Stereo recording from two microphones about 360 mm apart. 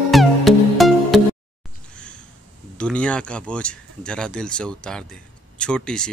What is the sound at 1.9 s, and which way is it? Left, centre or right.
Sniff, centre.